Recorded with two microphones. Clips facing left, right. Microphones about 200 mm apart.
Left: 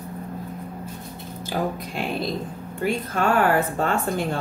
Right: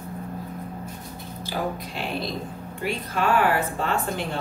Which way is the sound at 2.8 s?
45° left (ahead or behind).